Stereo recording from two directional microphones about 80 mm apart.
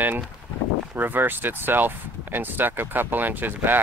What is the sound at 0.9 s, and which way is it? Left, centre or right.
Speech, right.